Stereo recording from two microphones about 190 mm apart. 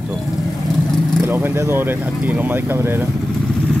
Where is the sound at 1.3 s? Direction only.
10° right (ahead or behind).